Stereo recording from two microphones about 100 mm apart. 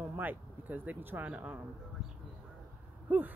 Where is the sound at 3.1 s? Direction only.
15° right (ahead or behind).